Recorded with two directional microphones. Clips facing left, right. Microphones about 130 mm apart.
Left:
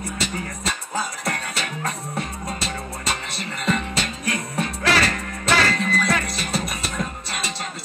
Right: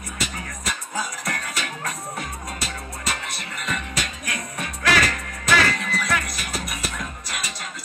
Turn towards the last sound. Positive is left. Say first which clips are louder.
# left 3 dB
turn(degrees=30)  # may be behind; listen again after turning